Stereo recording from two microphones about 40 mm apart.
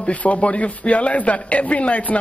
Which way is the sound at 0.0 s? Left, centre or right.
Left.